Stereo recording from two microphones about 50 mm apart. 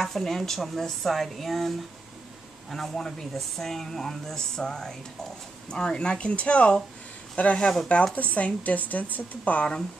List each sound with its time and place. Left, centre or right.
0.0 s a woman's voice: centre; by 9.7 s left